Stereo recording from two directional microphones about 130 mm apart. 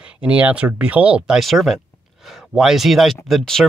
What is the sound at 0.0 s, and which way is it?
Speech, 10° right (ahead or behind).